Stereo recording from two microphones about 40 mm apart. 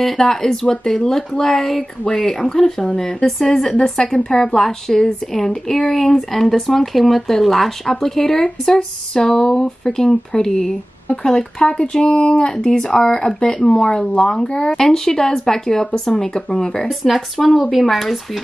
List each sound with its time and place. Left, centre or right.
0.0 s speech: centre
17.0 s speech: centre